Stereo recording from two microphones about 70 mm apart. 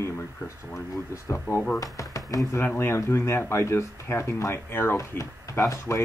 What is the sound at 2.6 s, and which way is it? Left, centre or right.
Speech, left.